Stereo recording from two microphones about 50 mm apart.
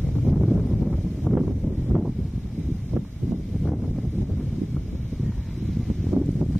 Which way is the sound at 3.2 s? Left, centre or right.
Right.